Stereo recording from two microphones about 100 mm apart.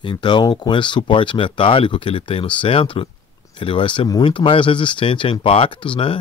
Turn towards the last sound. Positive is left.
turn(degrees=60)  # may be behind; listen again after turning